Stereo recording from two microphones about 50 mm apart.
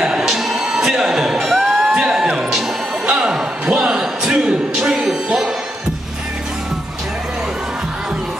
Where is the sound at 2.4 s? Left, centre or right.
Centre.